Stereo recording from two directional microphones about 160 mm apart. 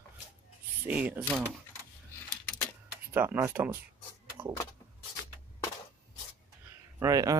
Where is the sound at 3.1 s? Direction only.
15° right (ahead or behind).